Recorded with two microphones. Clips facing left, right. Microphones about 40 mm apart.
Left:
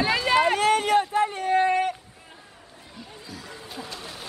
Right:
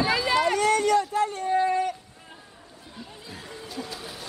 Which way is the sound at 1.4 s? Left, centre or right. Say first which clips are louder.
Left 2 dB; left.